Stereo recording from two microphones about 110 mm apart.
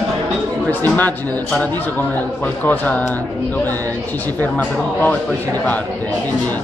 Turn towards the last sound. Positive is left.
turn(degrees=15)  # may be behind; listen again after turning